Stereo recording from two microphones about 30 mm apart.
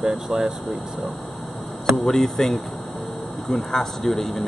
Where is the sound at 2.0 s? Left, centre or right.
Centre.